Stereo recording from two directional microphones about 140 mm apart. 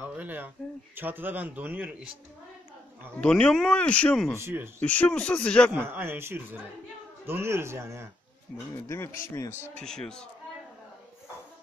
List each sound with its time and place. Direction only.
0.0 s a sound: 10° right (ahead or behind)
0.9 s a man's voice: 15° right (ahead or behind)
3.2 s speech: 10° left (ahead or behind)
4.4 s a man's voice: 15° right (ahead or behind)
4.7 s speech: 10° left (ahead or behind)
5.7 s a man's voice: 15° right (ahead or behind)
8.7 s speech: 20° left (ahead or behind)
9.8 s a man's voice: 5° left (ahead or behind)